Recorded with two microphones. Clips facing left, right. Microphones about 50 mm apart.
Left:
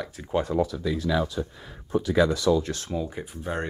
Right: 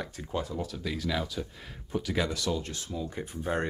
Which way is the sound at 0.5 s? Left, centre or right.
Left.